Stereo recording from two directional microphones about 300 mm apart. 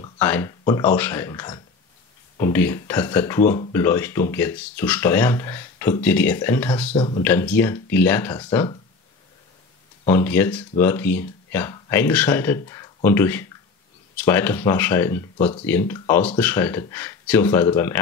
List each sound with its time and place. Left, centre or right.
0.2 s speech: centre
7.0 s speech: centre
7.2 s speech: centre
10.0 s speech: centre